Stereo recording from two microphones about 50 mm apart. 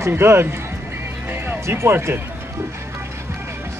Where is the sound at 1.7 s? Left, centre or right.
Right.